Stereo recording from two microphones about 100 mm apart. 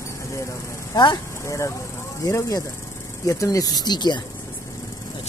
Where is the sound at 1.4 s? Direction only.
30° left (ahead or behind); by 4.2 s 45° left (ahead or behind).